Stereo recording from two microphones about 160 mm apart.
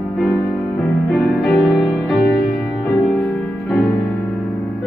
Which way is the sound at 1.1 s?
Centre (ahead or behind).